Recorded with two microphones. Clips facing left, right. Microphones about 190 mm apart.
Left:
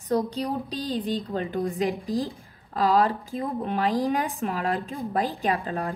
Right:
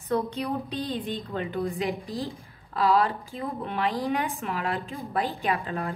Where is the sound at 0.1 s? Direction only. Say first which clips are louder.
Left 2 dB; 35° left (ahead or behind).